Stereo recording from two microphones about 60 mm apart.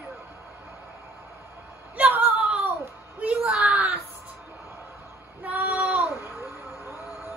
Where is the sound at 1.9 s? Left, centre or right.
Right.